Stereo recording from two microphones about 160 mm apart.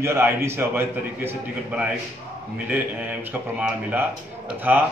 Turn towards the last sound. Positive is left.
turn(degrees=-10)  # may be behind; listen again after turning